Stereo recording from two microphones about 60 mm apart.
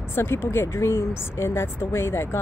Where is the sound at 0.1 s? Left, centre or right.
Left.